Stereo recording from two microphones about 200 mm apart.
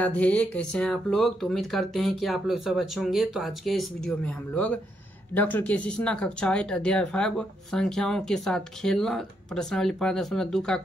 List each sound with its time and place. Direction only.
0.0 s speech: 5° left (ahead or behind)